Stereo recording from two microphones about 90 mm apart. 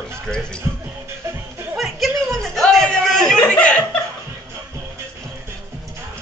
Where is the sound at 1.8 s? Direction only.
Centre (ahead or behind).